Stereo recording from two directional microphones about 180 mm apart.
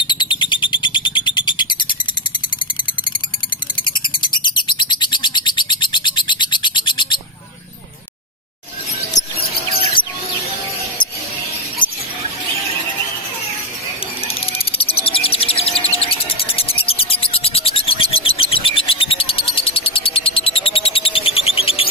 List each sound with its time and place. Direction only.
0.0 s bird: 25° left (ahead or behind)
3.7 s a sound: 25° left (ahead or behind)
4.5 s bird: 25° left (ahead or behind)
9.1 s mouse: 20° left (ahead or behind)
14.2 s bird: 30° left (ahead or behind)
15.8 s music: 35° left (ahead or behind)